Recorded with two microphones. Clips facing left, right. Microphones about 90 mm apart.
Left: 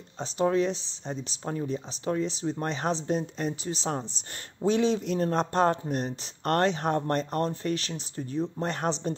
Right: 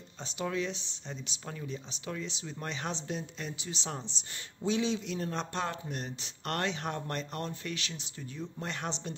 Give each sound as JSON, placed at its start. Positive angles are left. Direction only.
{"t": 0.2, "sound": "speech", "side_deg": 40}